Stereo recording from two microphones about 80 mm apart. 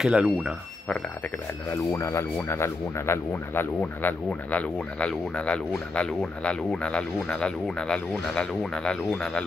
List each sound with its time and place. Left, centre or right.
0.0 s speech: centre
1.7 s speech: left
4.3 s speech: centre